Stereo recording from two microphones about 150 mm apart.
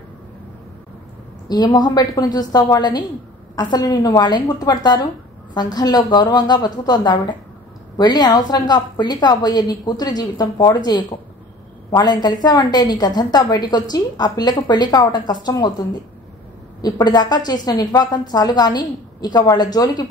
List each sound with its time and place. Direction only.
1.5 s a woman's voice: 30° left (ahead or behind)